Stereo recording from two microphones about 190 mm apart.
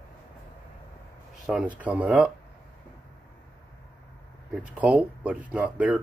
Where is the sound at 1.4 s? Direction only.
5° right (ahead or behind).